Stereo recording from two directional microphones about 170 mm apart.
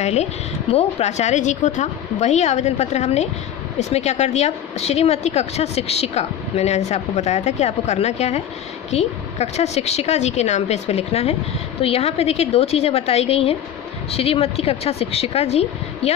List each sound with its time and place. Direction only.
0.0 s a woman's voice: 40° left (ahead or behind)